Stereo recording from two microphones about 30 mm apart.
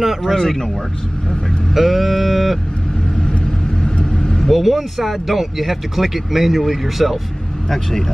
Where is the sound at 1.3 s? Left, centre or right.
Centre.